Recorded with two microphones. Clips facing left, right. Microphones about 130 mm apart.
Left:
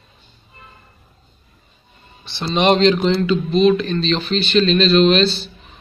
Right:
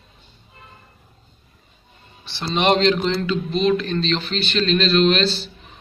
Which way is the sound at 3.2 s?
20° left (ahead or behind).